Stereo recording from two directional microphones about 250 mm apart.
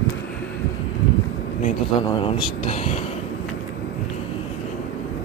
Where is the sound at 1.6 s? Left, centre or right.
Centre.